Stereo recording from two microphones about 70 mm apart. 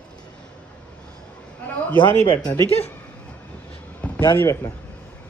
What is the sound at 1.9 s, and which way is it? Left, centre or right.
Speech, left.